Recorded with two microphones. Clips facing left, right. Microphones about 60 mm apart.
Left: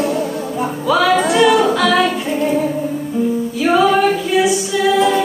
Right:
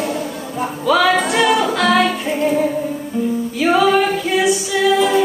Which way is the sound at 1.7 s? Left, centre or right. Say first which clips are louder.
Left 1 dB; right.